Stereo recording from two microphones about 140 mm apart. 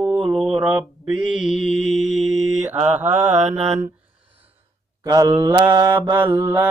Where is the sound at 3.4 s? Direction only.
55° right (ahead or behind).